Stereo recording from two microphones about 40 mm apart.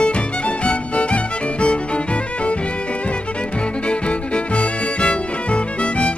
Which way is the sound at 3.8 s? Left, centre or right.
Left.